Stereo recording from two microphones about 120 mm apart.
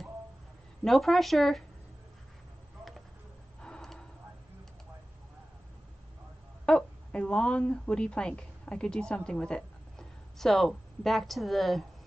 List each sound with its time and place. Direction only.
0.8 s speech: centre (ahead or behind)
3.6 s a sound: 5° left (ahead or behind)
6.6 s a woman's voice: 10° left (ahead or behind)